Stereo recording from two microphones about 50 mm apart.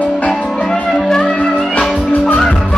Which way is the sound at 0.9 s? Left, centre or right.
Centre.